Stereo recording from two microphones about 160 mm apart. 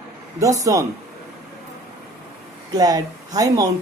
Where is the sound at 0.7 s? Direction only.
20° right (ahead or behind).